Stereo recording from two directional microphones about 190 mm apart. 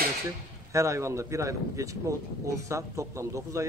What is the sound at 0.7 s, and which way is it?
Speech, 15° right (ahead or behind).